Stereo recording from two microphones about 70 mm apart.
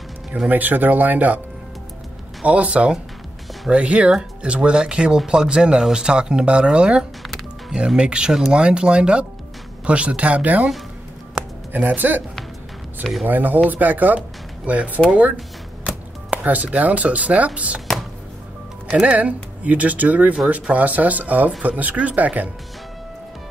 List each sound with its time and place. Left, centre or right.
0.5 s speech: right
2.4 s speech: centre
11.7 s speech: right
13.3 s speech: right
17.9 s music: centre
18.9 s speech: centre